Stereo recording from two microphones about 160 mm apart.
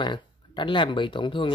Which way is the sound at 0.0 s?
30° left (ahead or behind).